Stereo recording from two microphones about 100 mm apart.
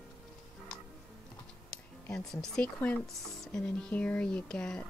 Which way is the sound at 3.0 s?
5° left (ahead or behind).